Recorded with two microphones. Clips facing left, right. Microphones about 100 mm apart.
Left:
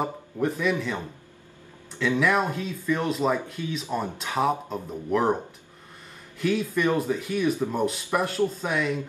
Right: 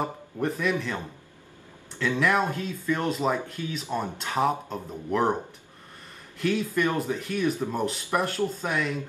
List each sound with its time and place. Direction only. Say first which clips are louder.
0.0 s speech: left 2 dB; centre (ahead or behind)
2.0 s speech: left 1 dB; centre (ahead or behind)
6.4 s speech: left 1 dB; centre (ahead or behind)